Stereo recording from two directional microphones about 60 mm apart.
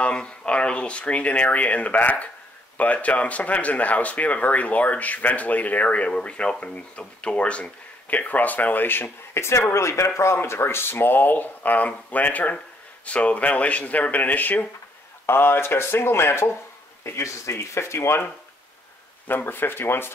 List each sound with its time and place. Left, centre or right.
0.0 s speech: centre; by 16.4 s left
17.0 s speech: left
19.2 s speech: left